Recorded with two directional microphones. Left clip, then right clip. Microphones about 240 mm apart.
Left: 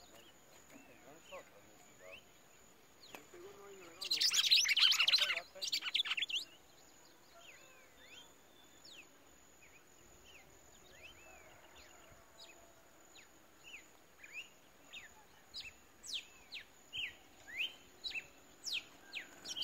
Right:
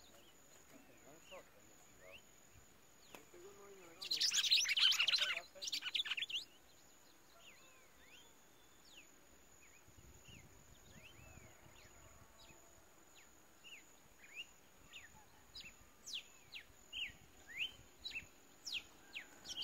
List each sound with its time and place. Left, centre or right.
4.0 s chirp: centre
15.5 s bird vocalization: left
17.6 s chirp: left
18.7 s bird: left